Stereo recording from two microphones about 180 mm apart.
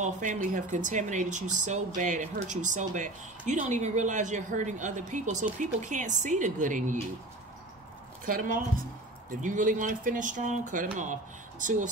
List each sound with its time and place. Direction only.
0.0 s speech: 45° right (ahead or behind)
8.3 s speech: 50° right (ahead or behind)